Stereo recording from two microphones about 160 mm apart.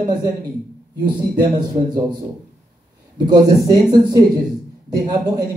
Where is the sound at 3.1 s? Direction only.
25° right (ahead or behind).